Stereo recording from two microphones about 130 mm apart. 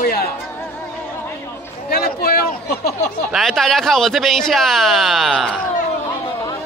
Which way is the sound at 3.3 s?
Centre (ahead or behind).